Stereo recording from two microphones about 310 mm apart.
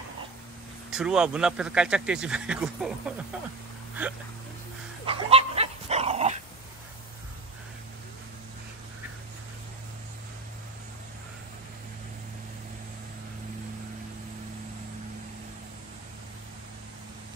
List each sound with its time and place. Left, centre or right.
0.8 s speech: centre
5.0 s dog: centre